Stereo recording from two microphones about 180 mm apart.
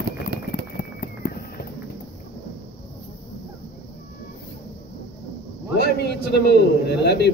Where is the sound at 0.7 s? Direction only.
50° left (ahead or behind).